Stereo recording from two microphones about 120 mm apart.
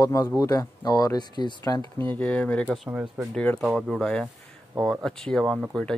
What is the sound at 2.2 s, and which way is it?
Speech, 10° left (ahead or behind).